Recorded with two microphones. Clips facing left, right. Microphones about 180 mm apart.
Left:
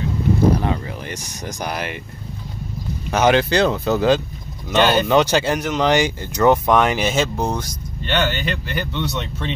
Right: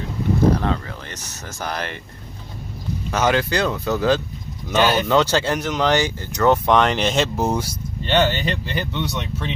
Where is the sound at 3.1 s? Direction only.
20° left (ahead or behind).